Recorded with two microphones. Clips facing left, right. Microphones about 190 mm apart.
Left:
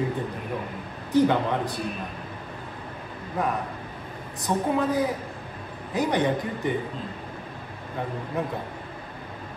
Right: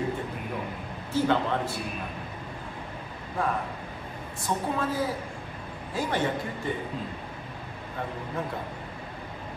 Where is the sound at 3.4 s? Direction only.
20° left (ahead or behind).